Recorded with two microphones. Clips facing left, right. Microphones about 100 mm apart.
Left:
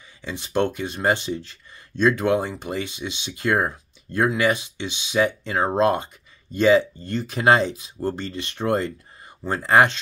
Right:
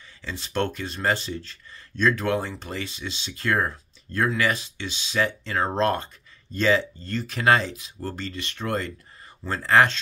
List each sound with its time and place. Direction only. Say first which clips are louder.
0.2 s speech: left 4 dB; 15° left (ahead or behind)